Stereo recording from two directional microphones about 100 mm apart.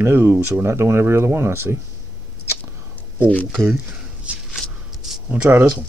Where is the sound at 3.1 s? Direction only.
20° left (ahead or behind).